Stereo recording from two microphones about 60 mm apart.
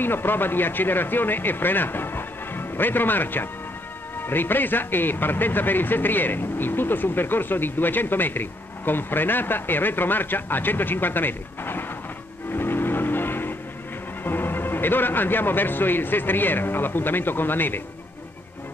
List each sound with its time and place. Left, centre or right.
0.0 s a man's voice: left
12.5 s vehicle: left
14.2 s a man's voice: left